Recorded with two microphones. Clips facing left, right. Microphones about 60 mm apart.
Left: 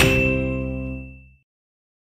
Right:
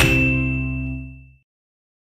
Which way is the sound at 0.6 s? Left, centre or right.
Centre.